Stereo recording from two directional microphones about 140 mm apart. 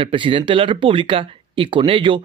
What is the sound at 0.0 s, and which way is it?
Speech, 40° right (ahead or behind).